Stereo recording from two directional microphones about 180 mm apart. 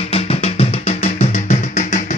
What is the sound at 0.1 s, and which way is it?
Music, 35° left (ahead or behind).